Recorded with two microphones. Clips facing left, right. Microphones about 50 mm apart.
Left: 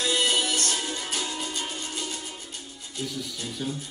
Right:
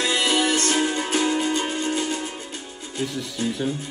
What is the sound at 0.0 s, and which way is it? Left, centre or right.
Music, right.